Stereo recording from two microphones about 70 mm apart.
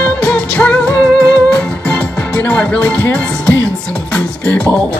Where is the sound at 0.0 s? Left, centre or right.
Centre.